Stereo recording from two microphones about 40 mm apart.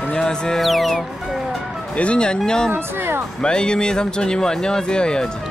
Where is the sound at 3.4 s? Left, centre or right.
Left.